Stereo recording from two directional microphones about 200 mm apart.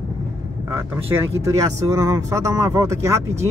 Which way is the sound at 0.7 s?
15° right (ahead or behind).